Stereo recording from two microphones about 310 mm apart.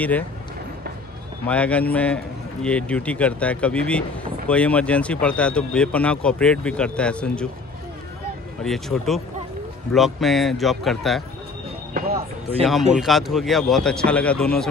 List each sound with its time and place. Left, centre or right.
1.5 s speech: centre
8.6 s speech: centre
11.9 s speech: right
12.9 s speech: centre